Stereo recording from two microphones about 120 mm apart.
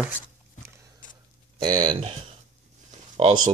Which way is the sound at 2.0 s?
55° right (ahead or behind).